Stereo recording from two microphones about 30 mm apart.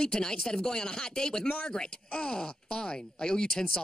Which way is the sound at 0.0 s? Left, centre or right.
Left.